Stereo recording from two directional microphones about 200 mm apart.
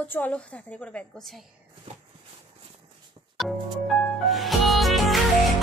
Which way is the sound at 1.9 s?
35° right (ahead or behind).